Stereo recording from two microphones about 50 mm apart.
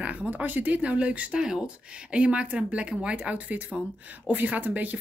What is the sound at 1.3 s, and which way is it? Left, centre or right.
Speech, centre.